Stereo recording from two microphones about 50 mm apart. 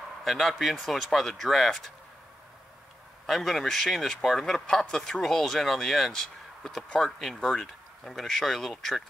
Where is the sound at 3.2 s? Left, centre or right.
Centre.